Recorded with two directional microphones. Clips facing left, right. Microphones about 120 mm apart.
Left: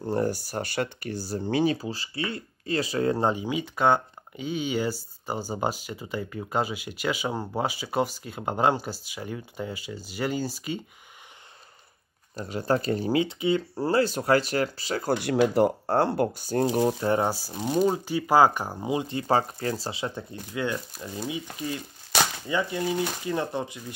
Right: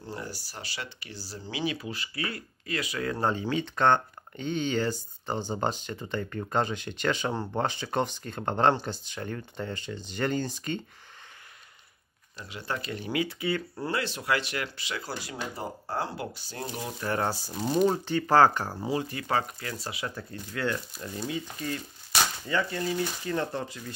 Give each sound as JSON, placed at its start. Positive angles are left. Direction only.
{"t": 0.0, "sound": "speech", "side_deg": 50}
{"t": 1.8, "sound": "speech", "side_deg": 30}
{"t": 3.3, "sound": "speech", "side_deg": 15}
{"t": 12.4, "sound": "speech", "side_deg": 40}
{"t": 13.2, "sound": "speech", "side_deg": 20}
{"t": 13.7, "sound": "speech", "side_deg": 35}
{"t": 15.0, "sound": "speech", "side_deg": 65}
{"t": 17.0, "sound": "speech", "side_deg": 20}